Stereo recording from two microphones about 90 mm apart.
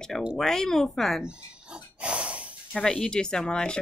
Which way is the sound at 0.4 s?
5° left (ahead or behind).